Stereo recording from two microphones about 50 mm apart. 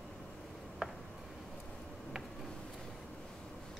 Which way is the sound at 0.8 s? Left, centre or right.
Centre.